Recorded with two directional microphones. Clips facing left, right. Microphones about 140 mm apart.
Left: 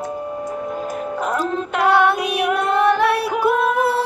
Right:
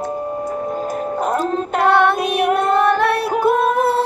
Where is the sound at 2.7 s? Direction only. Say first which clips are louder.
Left 1 dB; 15° left (ahead or behind).